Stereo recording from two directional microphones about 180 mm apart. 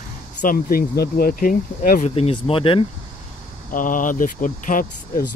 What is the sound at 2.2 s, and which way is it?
Speech, 30° left (ahead or behind).